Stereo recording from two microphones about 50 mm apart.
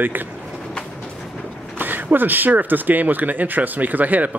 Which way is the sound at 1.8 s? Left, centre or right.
Right.